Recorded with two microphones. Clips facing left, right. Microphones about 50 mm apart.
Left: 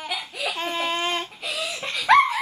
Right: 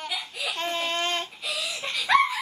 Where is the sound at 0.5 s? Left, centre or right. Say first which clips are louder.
Left 1 dB; centre.